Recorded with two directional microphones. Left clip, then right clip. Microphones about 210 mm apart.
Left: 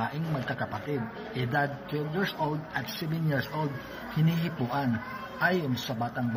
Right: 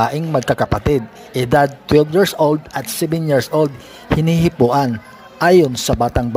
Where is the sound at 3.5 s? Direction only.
55° right (ahead or behind).